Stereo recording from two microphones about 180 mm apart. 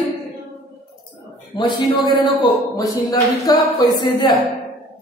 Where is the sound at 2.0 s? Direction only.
25° left (ahead or behind).